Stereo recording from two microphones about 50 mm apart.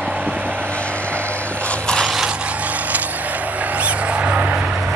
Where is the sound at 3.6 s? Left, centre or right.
Right.